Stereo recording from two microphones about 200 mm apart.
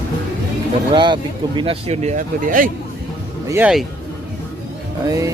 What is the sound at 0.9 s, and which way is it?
Speech, 25° right (ahead or behind).